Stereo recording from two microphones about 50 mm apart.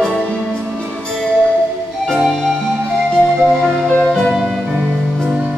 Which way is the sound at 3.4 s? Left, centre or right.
Centre.